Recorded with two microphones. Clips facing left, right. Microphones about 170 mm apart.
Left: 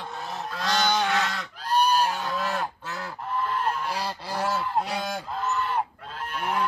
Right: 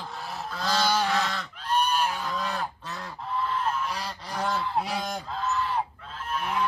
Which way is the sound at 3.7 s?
35° left (ahead or behind).